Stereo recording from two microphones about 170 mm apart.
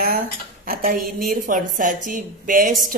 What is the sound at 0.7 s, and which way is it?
A woman's voice, 60° right (ahead or behind).